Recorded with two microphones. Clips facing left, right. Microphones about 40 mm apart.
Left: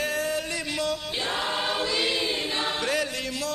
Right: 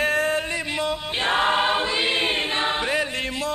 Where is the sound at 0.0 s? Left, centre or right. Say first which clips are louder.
Right 6 dB; right.